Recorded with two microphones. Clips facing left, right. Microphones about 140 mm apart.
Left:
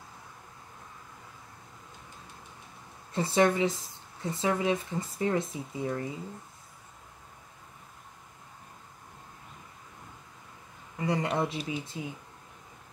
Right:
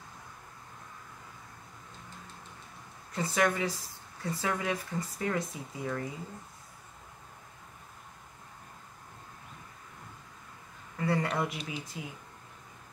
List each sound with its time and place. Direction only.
3.1 s speech: 30° left (ahead or behind)
11.0 s speech: 20° left (ahead or behind)